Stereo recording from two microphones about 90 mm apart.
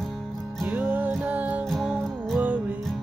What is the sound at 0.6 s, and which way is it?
Music, 20° right (ahead or behind).